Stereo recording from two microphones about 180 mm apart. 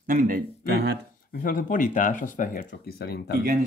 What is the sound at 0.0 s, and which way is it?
Speech, 50° right (ahead or behind).